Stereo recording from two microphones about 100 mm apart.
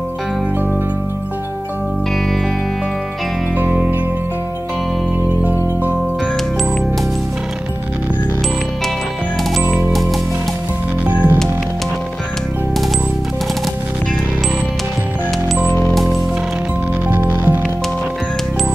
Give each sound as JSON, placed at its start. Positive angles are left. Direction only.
{"t": 3.5, "sound": "music", "side_deg": -15}
{"t": 5.4, "sound": "music", "side_deg": -20}
{"t": 9.8, "sound": "music", "side_deg": 0}
{"t": 11.1, "sound": "music", "side_deg": -20}
{"t": 15.9, "sound": "music", "side_deg": 0}
{"t": 17.1, "sound": "music", "side_deg": -20}